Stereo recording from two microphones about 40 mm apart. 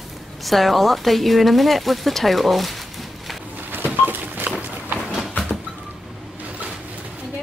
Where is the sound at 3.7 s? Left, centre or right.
Right.